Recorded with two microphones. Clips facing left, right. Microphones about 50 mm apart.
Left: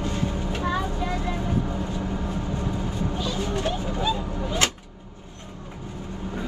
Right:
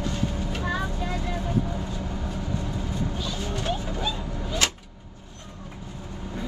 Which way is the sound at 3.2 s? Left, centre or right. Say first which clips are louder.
Left 4 dB; left.